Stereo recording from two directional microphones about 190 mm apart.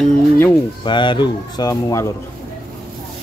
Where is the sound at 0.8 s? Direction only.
25° left (ahead or behind).